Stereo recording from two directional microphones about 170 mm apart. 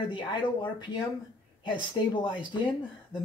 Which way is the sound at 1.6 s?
30° left (ahead or behind).